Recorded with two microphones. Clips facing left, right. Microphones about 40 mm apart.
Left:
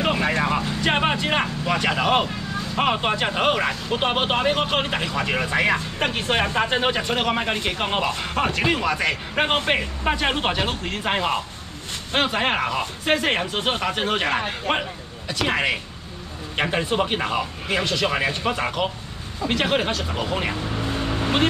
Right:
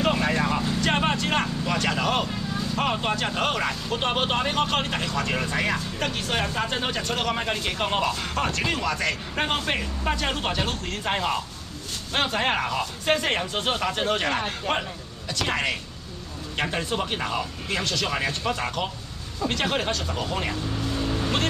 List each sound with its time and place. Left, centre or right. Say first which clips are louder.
0.0 s speech: left 2 dB; centre